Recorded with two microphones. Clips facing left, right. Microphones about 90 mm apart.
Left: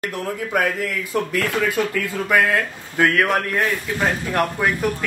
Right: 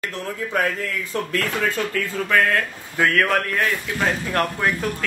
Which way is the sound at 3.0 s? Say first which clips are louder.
Left 1 dB; 15° left (ahead or behind).